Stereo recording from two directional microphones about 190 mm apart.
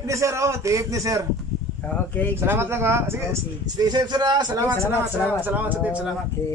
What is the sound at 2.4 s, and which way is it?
Speech, 10° right (ahead or behind).